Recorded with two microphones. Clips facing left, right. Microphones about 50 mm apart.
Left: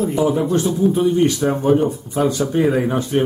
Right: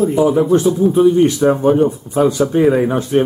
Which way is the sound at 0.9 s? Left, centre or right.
Centre.